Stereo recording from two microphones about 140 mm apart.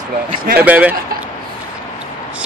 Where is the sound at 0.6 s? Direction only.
10° right (ahead or behind).